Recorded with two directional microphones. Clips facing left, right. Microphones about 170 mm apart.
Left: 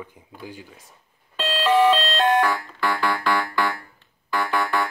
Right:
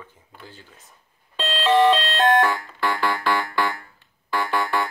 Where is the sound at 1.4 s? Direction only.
10° left (ahead or behind).